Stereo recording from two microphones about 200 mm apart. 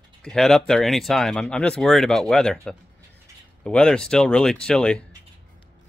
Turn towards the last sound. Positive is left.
turn(degrees=5)  # may be behind; listen again after turning